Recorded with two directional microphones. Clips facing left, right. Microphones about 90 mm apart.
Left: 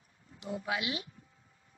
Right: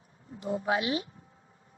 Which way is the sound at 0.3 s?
35° right (ahead or behind).